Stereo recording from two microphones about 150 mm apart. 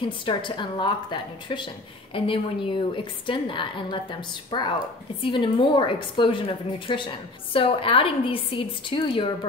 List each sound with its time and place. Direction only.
0.0 s a woman's voice: 35° left (ahead or behind)